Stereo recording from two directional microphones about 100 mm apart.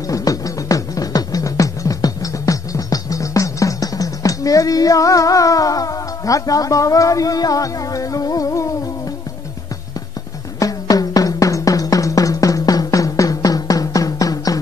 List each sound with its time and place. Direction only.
0.1 s music: 35° left (ahead or behind)
10.6 s music: 40° left (ahead or behind)